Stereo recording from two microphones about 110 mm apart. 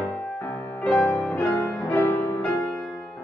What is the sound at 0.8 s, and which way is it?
Music, 25° left (ahead or behind).